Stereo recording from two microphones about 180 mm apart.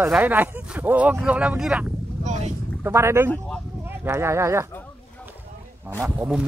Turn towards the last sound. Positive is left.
turn(degrees=-5)  # may be behind; listen again after turning